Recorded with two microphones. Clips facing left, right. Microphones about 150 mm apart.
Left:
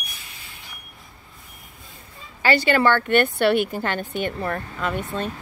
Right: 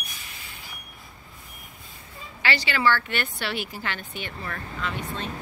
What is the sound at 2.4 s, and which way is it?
Speech, 50° left (ahead or behind).